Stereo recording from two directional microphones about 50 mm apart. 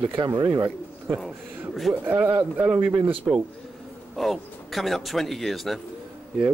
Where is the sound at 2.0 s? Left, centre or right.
Right.